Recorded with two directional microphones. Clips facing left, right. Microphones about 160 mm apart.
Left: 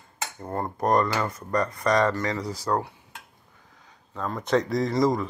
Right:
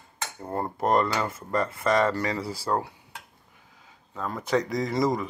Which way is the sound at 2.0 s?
10° right (ahead or behind).